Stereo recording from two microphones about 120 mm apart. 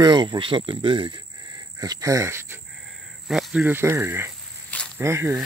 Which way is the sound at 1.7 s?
30° right (ahead or behind).